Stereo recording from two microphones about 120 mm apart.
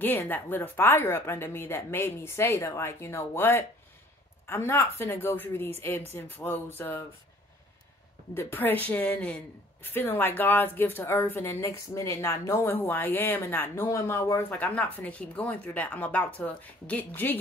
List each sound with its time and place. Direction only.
0.0 s a woman's voice: 15° left (ahead or behind)
8.4 s a woman's voice: 20° left (ahead or behind)